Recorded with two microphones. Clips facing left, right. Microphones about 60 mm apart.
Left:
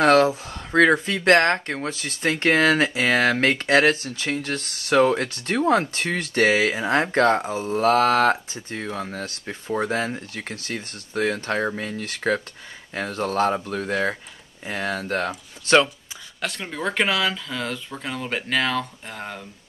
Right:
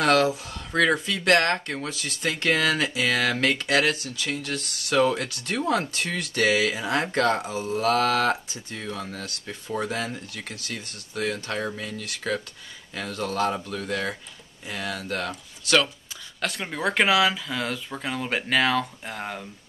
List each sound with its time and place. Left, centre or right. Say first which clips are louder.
0.0 s speech: left 4 dB; left
16.3 s speech: even; centre